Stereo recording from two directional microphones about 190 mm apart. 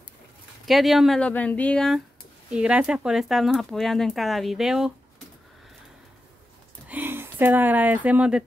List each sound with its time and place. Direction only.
0.7 s speech: centre (ahead or behind)
2.5 s speech: 5° right (ahead or behind)
6.9 s speech: 10° right (ahead or behind)